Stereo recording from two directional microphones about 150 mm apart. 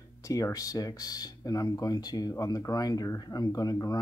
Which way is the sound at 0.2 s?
25° left (ahead or behind).